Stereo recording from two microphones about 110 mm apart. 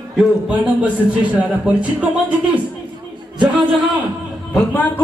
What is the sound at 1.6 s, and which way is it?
Speech, 10° right (ahead or behind).